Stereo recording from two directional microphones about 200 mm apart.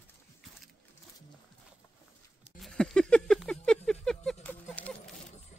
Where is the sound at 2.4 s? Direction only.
Centre (ahead or behind).